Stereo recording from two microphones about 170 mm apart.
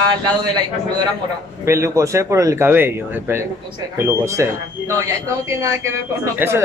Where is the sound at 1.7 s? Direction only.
15° right (ahead or behind).